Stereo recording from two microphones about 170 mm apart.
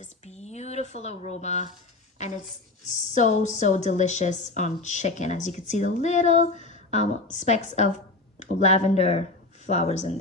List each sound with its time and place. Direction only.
0.0 s speech: 40° left (ahead or behind)
2.9 s a woman's voice: 45° left (ahead or behind)